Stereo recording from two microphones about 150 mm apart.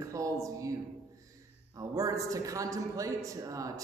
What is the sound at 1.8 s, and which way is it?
A man's voice, 20° right (ahead or behind).